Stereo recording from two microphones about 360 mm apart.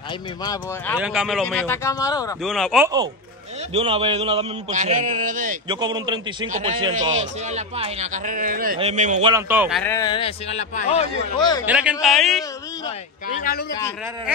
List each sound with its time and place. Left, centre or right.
0.9 s a man's voice: centre
3.7 s a man's voice: centre
9.3 s a man's voice: centre
11.6 s a man's voice: centre
13.4 s a man's voice: left